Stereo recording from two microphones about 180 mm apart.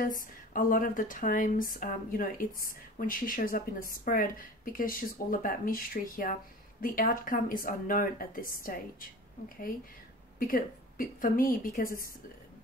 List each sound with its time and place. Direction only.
0.2 s speech: 50° left (ahead or behind)
10.4 s speech: 50° left (ahead or behind)